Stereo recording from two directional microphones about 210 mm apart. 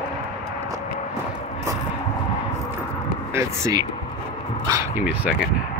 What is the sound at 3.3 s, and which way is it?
Speech, 15° right (ahead or behind).